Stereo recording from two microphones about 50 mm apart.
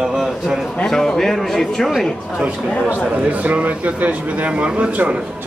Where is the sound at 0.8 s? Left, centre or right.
Centre.